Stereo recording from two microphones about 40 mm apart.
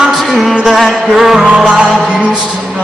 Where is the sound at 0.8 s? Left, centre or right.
Centre.